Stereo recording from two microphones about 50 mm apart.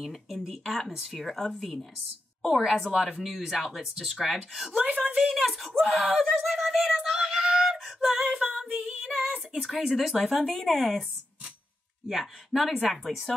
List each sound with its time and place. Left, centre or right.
0.0 s speech: centre
4.8 s a woman's voice: right
5.2 s speech: centre
5.8 s music: centre
8.5 s female singing: centre
9.8 s speech: centre
12.1 s speech: centre